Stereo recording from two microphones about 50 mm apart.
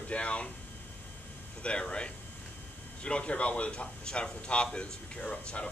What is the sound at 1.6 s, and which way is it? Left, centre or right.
Speech, left.